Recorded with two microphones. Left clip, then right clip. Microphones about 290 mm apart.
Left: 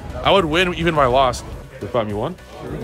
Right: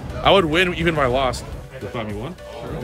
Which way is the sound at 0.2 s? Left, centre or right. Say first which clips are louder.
Even; centre.